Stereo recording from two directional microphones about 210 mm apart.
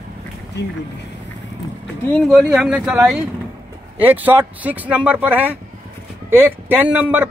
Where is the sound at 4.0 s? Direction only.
10° right (ahead or behind).